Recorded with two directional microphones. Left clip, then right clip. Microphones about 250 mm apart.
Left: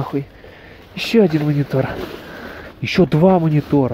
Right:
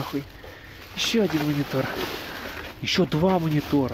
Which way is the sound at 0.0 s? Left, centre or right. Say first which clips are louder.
Left 7 dB; centre.